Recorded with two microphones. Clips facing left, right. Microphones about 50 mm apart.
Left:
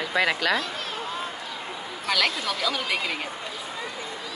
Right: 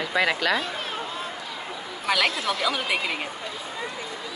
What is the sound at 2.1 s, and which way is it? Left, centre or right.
A woman's voice, centre.